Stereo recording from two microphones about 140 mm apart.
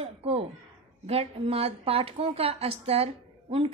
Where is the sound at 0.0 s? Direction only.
45° right (ahead or behind).